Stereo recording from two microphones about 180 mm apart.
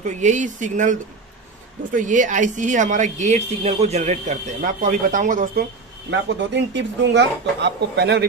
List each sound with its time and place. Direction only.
0.0 s a woman's voice: 40° right (ahead or behind)
6.0 s speech: 75° right (ahead or behind)